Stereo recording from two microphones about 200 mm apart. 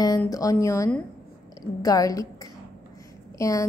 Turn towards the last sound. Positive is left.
turn(degrees=15)  # may be behind; listen again after turning